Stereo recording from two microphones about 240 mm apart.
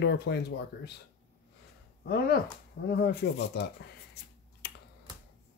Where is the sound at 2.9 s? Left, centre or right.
Left.